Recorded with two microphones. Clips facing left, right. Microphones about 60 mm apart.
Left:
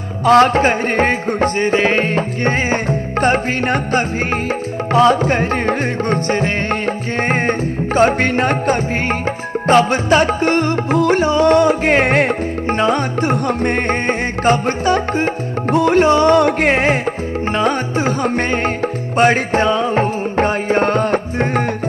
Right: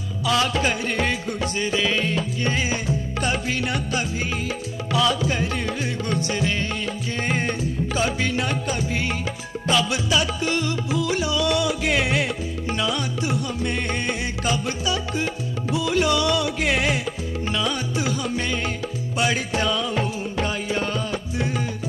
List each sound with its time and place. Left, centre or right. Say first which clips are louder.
0.2 s music: left 11 dB; left